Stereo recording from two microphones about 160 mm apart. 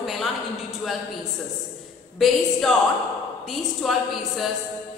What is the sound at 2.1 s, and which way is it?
A woman's voice, centre (ahead or behind).